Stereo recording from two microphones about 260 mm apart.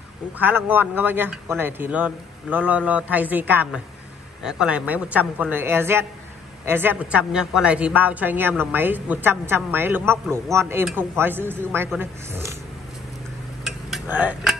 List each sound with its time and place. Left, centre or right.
0.4 s a woman's voice: centre
13.7 s a sound: centre
14.1 s speech: centre